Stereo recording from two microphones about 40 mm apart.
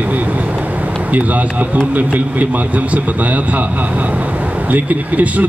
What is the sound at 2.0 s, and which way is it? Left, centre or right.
A man's voice, right.